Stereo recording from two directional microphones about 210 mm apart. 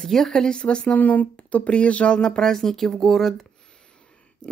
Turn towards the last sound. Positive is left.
turn(degrees=5)  # may be behind; listen again after turning